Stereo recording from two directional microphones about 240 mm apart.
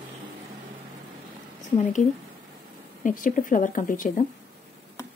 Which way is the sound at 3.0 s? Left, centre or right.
Left.